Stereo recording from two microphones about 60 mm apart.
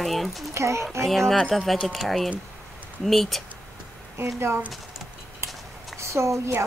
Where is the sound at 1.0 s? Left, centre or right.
Centre.